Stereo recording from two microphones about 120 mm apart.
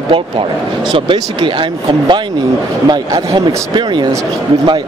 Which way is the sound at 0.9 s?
45° right (ahead or behind).